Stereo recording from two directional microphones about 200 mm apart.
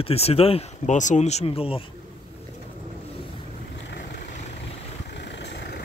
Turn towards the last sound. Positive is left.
turn(degrees=60)  # may be behind; listen again after turning